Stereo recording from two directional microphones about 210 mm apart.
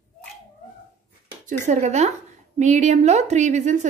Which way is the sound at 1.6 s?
30° right (ahead or behind).